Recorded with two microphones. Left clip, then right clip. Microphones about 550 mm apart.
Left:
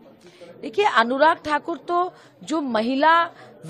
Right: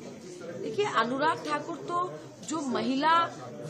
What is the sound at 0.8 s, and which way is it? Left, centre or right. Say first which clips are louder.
A woman's voice: left 10 dB; left.